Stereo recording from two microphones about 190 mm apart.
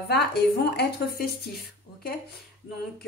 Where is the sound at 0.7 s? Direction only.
55° left (ahead or behind).